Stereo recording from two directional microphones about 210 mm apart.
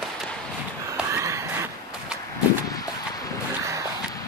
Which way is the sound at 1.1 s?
15° right (ahead or behind).